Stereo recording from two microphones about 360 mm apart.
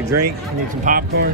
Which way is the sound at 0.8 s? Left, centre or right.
Right.